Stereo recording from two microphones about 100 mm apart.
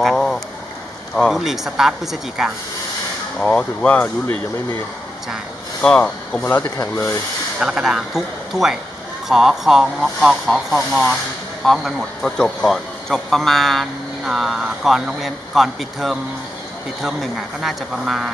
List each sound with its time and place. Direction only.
0.0 s a sound: 5° left (ahead or behind)
1.1 s a man's voice: centre (ahead or behind)
3.3 s speech: 5° left (ahead or behind)
5.8 s speech: 5° left (ahead or behind)
7.5 s a man's voice: 5° right (ahead or behind)